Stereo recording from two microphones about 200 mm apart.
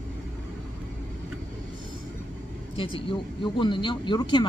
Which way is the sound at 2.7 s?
25° left (ahead or behind).